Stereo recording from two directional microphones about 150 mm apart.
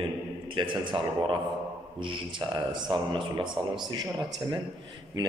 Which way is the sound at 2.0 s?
35° right (ahead or behind).